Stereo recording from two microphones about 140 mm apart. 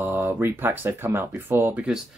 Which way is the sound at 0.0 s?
15° right (ahead or behind).